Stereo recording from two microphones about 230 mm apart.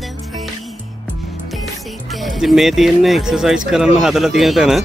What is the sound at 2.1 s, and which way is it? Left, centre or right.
Speech, centre.